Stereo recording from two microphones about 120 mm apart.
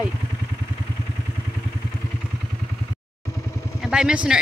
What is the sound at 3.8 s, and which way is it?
Speech, 5° right (ahead or behind).